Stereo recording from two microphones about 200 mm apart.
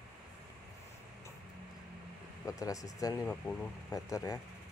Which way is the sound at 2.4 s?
15° left (ahead or behind).